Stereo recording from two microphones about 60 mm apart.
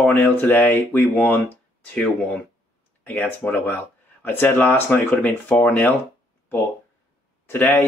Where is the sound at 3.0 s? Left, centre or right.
Left.